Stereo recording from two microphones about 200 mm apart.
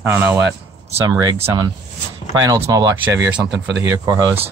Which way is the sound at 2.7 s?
15° right (ahead or behind).